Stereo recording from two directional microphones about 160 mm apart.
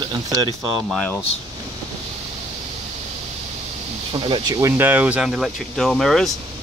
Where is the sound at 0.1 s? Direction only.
25° right (ahead or behind).